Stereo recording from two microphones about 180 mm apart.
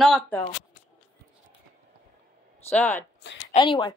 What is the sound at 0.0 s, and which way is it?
Speech, 5° left (ahead or behind).